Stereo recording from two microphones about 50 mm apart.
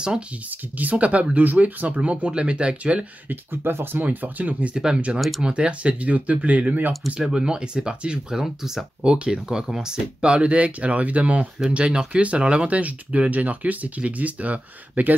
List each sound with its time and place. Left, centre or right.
0.7 s speech: right
3.3 s speech: right
4.0 s speech: right
4.7 s speech: centre
7.2 s speech: centre; by 15.1 s right